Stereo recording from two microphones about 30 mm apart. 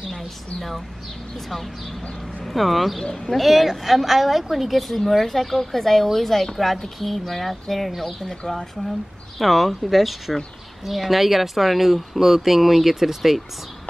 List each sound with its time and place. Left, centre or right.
2.4 s a woman's voice: centre
3.0 s speech: left
3.3 s a woman's voice: centre